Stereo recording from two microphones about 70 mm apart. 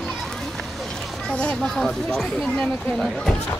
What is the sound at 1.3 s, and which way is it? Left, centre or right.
Speech, centre.